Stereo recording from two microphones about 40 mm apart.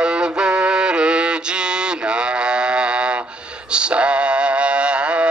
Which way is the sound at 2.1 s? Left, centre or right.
Right.